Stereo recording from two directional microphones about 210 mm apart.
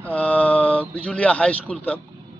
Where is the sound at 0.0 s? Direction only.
5° left (ahead or behind).